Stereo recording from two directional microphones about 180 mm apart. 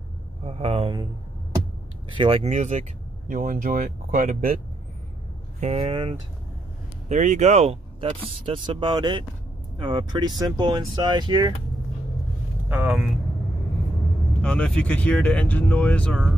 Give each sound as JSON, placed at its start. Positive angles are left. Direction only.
{"t": 0.4, "sound": "speech", "side_deg": -35}
{"t": 2.1, "sound": "speech", "side_deg": -30}
{"t": 5.6, "sound": "speech", "side_deg": -35}
{"t": 7.1, "sound": "speech", "side_deg": -40}
{"t": 12.6, "sound": "speech", "side_deg": -5}
{"t": 14.4, "sound": "speech", "side_deg": 5}